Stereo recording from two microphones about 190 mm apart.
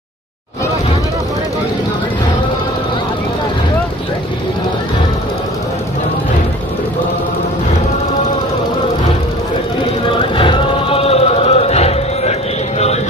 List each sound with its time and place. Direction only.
10.3 s music: 25° left (ahead or behind)